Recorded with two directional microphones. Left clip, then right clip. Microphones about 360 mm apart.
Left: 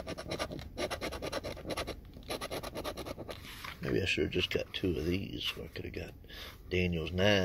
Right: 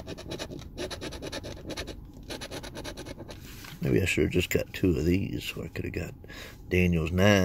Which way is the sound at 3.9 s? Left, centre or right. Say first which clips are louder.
Right 5 dB; right.